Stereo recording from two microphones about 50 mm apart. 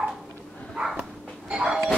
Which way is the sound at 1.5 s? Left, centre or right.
Centre.